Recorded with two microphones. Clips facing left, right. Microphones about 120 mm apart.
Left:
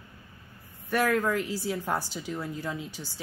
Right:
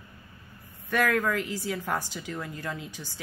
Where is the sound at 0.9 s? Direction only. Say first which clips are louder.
Even; 10° left (ahead or behind).